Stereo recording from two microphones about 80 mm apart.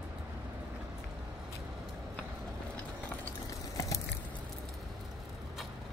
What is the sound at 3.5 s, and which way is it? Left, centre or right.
Biting, left.